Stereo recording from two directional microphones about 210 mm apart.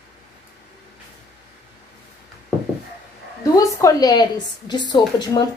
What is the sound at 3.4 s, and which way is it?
A woman's voice, 15° left (ahead or behind).